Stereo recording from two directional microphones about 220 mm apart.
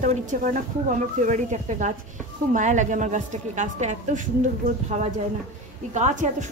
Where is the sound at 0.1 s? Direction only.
35° right (ahead or behind).